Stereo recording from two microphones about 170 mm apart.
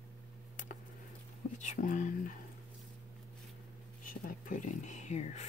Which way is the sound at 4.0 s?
55° left (ahead or behind).